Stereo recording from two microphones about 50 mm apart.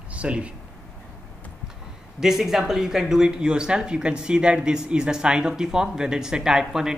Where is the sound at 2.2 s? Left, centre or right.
Centre.